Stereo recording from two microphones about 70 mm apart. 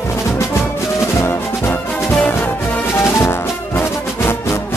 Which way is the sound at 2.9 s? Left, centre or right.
Left.